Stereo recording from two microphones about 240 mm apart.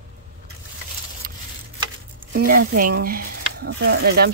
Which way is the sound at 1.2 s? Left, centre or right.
Right.